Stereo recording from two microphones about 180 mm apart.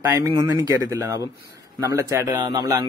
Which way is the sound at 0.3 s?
25° right (ahead or behind).